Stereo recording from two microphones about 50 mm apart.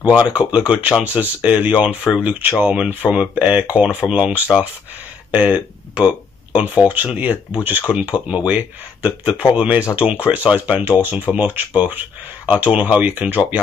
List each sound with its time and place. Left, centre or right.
0.0 s speech: right
10.8 s speech: right